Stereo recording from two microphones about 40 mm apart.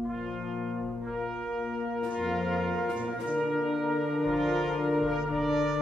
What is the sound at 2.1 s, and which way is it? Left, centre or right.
Brass instrument, centre.